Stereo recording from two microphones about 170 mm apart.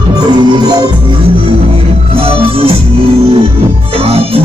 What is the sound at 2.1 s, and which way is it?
Music, 35° right (ahead or behind).